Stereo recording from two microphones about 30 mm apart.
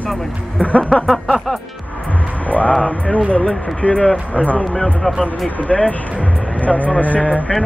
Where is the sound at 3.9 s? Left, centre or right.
Left.